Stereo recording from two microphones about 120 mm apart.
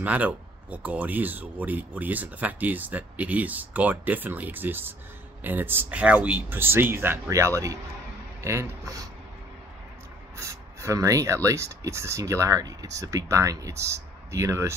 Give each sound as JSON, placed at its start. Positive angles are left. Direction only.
{"t": 0.0, "sound": "speech", "side_deg": -10}
{"t": 10.3, "sound": "speech", "side_deg": -25}